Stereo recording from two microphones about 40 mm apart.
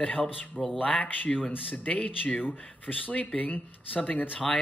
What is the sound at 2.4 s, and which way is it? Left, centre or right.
Speech, left.